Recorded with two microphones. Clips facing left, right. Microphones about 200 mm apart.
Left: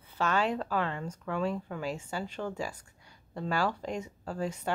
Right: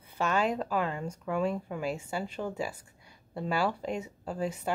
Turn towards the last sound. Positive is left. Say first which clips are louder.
# right 1 dB
turn(degrees=-5)  # may be behind; listen again after turning